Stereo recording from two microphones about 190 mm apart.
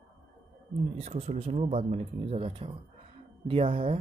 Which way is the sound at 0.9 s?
30° right (ahead or behind).